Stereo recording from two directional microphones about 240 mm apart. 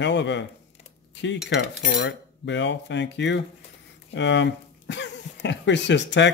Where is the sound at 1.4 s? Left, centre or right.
Left.